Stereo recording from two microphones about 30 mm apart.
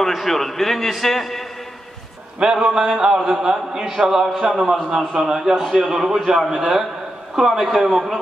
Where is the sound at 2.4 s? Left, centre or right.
Right.